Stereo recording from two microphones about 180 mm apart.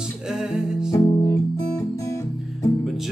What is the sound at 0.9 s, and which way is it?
Music, 20° left (ahead or behind).